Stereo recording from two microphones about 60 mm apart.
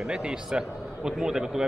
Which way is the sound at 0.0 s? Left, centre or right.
Centre.